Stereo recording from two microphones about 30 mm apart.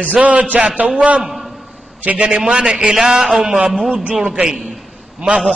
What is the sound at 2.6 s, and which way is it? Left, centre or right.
Speech, right.